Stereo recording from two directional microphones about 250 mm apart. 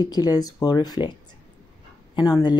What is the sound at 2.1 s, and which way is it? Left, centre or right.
Speech, centre.